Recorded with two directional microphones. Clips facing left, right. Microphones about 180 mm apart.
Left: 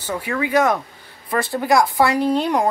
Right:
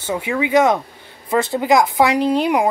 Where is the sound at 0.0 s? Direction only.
20° right (ahead or behind).